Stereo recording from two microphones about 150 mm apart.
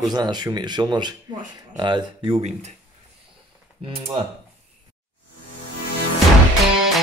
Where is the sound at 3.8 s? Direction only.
30° right (ahead or behind).